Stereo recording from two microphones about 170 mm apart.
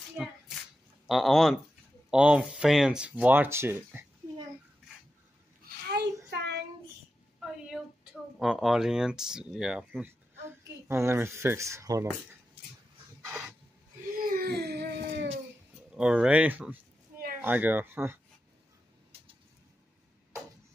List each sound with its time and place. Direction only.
0.2 s hands: 5° right (ahead or behind)
1.0 s speech: centre (ahead or behind)
6.3 s child singing: 75° right (ahead or behind)
7.4 s speech: 5° right (ahead or behind)
13.2 s a sound: 10° right (ahead or behind)
14.1 s baby cry: 55° right (ahead or behind)
15.9 s speech: 5° right (ahead or behind)